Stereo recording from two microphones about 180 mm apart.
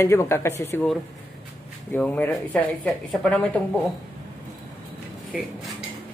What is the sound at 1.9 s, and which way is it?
Speech, 10° left (ahead or behind).